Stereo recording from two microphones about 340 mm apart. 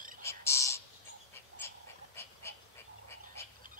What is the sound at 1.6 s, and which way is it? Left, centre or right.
Dog, centre.